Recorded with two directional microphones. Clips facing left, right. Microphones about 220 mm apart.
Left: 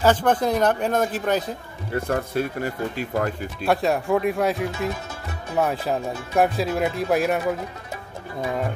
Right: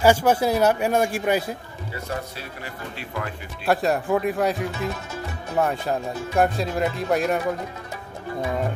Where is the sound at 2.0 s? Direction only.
50° left (ahead or behind).